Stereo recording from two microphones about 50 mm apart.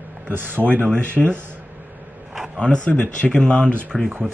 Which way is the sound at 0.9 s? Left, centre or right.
Left.